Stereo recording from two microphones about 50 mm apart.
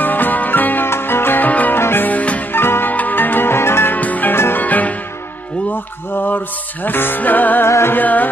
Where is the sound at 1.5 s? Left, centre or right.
Left.